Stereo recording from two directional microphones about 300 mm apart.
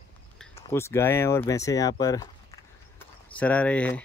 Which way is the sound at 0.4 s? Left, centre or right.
Centre.